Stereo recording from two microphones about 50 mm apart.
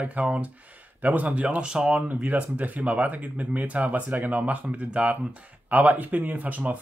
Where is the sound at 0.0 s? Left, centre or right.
Right.